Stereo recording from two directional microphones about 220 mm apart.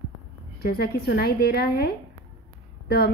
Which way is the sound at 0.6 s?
45° left (ahead or behind).